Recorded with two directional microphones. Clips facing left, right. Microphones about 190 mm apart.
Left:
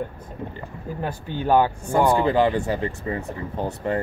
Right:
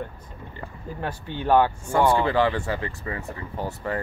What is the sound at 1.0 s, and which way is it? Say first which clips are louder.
Speech: left 1 dB; 15° left (ahead or behind).